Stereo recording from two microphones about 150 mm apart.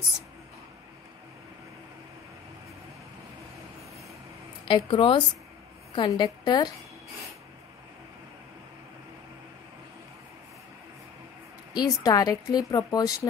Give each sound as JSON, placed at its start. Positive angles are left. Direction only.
{"t": 4.6, "sound": "speech", "side_deg": 35}
{"t": 11.7, "sound": "speech", "side_deg": 25}